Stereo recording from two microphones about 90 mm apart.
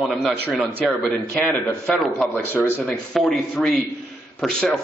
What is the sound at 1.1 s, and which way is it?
Speech, 20° left (ahead or behind).